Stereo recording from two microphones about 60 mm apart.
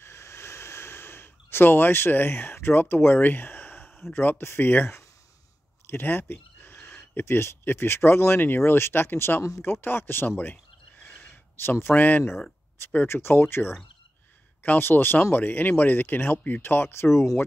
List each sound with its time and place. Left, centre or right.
0.0 s snort: left
4.1 s speech: left
11.2 s a sound: left
11.9 s speech: left
13.0 s speech: left